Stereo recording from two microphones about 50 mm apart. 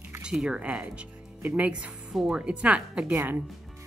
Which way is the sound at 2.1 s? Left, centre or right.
Centre.